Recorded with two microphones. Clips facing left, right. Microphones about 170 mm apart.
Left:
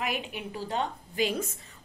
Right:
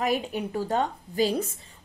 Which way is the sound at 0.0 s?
40° right (ahead or behind).